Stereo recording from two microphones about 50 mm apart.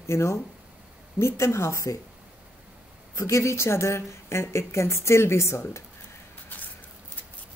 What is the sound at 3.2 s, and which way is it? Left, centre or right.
Speech, left.